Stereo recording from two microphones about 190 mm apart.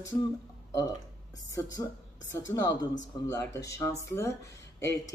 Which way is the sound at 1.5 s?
20° left (ahead or behind).